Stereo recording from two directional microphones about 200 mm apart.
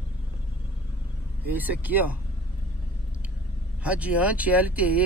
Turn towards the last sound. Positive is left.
turn(degrees=-10)  # may be behind; listen again after turning